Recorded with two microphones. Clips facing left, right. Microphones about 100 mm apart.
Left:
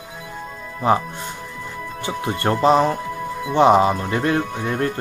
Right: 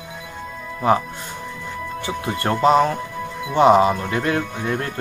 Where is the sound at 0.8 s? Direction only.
25° left (ahead or behind).